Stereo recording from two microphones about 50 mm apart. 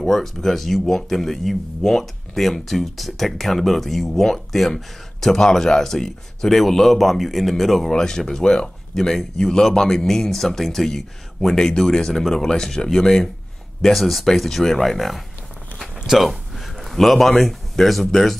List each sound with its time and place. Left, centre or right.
0.0 s a man's voice: centre
16.1 s a sound: centre
17.4 s speech: centre